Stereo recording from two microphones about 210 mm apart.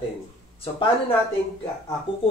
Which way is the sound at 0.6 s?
25° left (ahead or behind).